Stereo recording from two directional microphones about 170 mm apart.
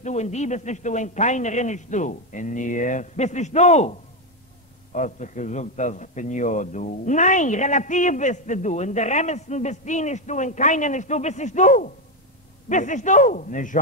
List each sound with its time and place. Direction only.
0.0 s a man's voice: 45° left (ahead or behind)
4.9 s a man's voice: 45° left (ahead or behind)